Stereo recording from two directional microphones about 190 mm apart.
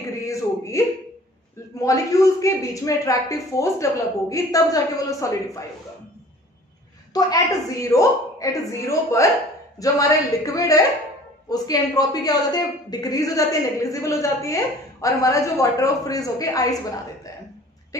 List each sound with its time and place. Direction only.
0.2 s a sound: 15° left (ahead or behind)
1.8 s speech: 15° left (ahead or behind)
7.2 s a woman's voice: 20° left (ahead or behind)